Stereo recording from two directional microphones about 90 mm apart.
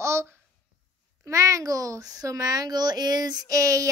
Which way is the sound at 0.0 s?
30° right (ahead or behind).